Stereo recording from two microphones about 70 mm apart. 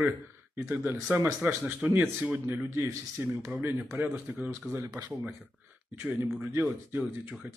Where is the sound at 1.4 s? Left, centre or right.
Right.